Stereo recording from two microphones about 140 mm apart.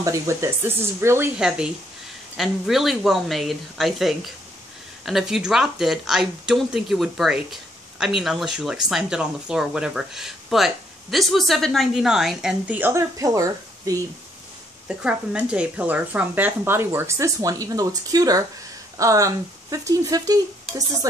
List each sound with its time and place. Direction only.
0.0 s speech: 20° right (ahead or behind)
2.3 s speech: centre (ahead or behind); by 14.0 s 25° right (ahead or behind)
14.9 s speech: 5° right (ahead or behind); by 20.4 s 25° right (ahead or behind)